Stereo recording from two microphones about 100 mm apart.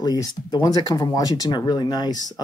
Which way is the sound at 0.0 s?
40° left (ahead or behind).